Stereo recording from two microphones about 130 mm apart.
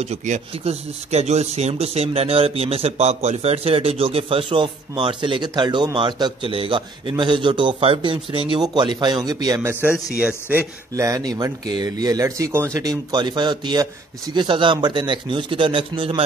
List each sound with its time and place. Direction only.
0.0 s speech: 60° right (ahead or behind); by 9.6 s 30° right (ahead or behind)
9.6 s a man's voice: 15° right (ahead or behind)
11.0 s speech: 25° right (ahead or behind)